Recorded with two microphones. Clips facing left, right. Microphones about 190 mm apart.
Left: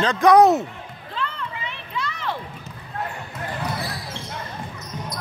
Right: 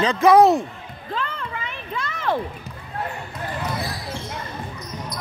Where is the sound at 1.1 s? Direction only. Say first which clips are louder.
Right 2 dB; 45° right (ahead or behind).